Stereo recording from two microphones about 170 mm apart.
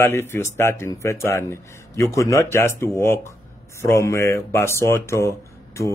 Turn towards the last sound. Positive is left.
turn(degrees=15)  # may be behind; listen again after turning